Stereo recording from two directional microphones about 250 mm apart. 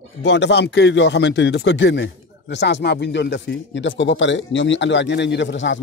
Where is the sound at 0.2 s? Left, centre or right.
Left.